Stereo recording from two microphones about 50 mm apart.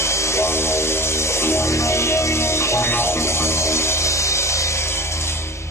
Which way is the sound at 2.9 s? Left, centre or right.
Left.